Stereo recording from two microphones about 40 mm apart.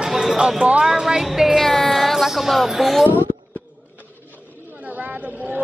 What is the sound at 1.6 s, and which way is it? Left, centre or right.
Speech, centre.